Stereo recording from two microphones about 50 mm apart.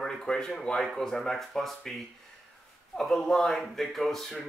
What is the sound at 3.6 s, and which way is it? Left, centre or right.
Speech, centre.